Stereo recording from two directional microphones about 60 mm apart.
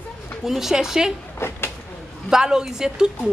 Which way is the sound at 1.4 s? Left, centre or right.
Left.